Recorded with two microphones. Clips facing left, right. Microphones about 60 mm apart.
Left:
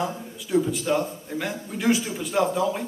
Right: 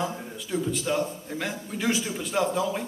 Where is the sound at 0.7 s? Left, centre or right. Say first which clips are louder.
Left 2 dB; centre.